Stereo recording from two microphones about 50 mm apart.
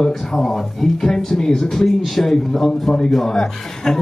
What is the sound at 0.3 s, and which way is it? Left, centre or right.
A man's voice, centre.